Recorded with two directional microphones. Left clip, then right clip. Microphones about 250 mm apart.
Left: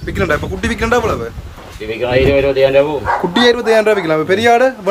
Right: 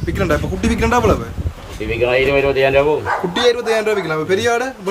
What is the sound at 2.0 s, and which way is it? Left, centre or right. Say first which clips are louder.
Speech: left 3 dB; centre.